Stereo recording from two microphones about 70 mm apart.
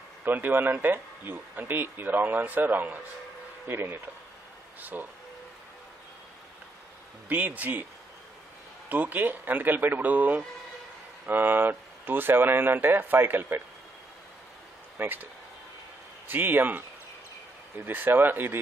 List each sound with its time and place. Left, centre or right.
0.2 s speech: right
7.2 s speech: right
8.8 s speech: right
15.0 s speech: right
16.3 s speech: right